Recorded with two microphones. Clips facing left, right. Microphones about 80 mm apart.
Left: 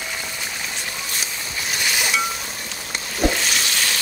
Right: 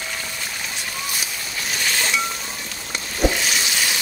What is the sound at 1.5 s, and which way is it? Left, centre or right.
Chink, centre.